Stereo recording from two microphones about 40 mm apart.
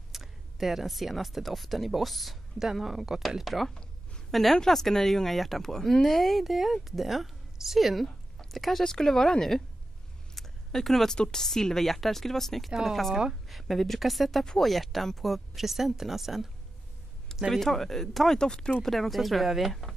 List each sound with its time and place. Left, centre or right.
0.1 s speech: centre
5.7 s speech: centre
8.8 s speech: centre
10.3 s a sound: centre
11.1 s speech: centre
14.4 s speech: centre
14.7 s speech: centre
17.5 s speech: centre
18.4 s speech: centre
18.8 s speech: centre